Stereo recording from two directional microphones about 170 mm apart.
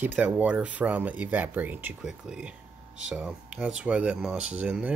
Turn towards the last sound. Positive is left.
turn(degrees=-10)  # may be behind; listen again after turning